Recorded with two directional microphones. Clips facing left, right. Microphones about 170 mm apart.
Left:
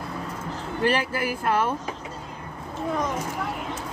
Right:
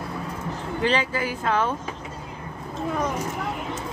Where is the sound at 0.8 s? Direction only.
10° left (ahead or behind).